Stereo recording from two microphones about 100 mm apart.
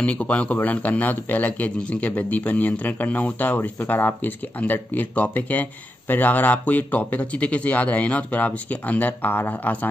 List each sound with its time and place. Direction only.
0.0 s a man's voice: 10° left (ahead or behind)